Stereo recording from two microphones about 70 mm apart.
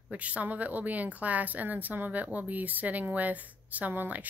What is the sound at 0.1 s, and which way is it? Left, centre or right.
Speech, centre.